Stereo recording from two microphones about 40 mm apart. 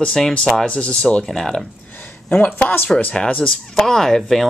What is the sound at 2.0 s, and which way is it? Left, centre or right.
Speech, left.